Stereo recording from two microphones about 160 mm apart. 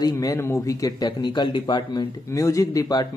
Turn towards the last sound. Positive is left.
turn(degrees=20)  # may be behind; listen again after turning